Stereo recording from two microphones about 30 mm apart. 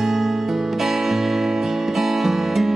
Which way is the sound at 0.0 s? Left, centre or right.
Centre.